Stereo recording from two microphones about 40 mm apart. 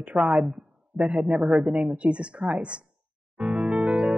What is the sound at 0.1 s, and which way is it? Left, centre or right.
Speech, right.